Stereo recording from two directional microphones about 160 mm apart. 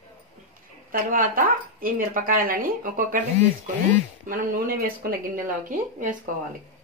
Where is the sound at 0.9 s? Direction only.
60° right (ahead or behind).